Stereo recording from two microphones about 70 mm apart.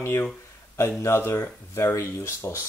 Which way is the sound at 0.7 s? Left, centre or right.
Left.